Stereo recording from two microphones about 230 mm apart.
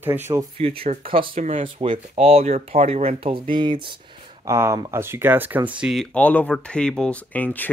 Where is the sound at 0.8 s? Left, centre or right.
Right.